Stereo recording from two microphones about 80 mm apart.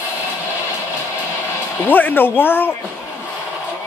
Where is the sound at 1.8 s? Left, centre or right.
Left.